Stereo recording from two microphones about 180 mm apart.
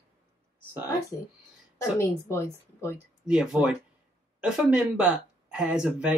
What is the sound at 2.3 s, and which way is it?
Speech, 15° left (ahead or behind).